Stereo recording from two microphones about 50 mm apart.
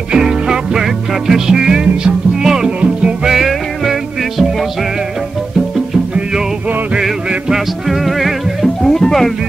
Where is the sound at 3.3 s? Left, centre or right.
Centre.